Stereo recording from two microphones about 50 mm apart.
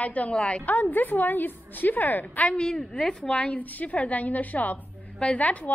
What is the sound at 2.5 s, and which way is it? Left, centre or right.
A woman's voice, centre.